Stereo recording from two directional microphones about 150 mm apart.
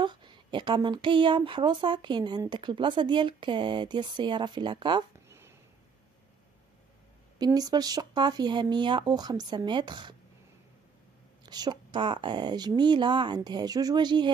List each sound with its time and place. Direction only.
0.0 s speech: 30° right (ahead or behind)
7.3 s a woman's voice: 25° right (ahead or behind)
11.4 s a woman's voice: 25° right (ahead or behind)